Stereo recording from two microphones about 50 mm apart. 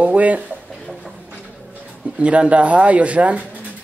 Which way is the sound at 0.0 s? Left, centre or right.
Right.